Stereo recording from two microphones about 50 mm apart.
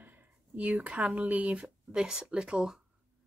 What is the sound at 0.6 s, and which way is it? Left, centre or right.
Speech, right.